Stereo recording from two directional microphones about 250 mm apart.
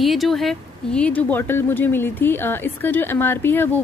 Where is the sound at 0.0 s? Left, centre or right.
Centre.